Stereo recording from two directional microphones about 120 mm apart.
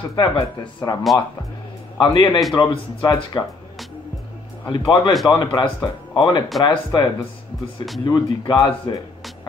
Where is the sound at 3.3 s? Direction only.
40° left (ahead or behind).